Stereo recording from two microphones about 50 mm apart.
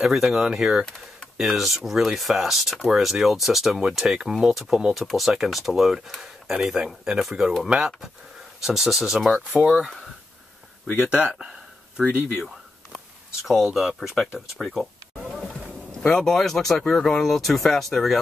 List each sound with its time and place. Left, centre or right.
0.0 s speech: centre
0.8 s a sound: centre
1.4 s speech: centre
13.4 s speech: centre
16.1 s speech: centre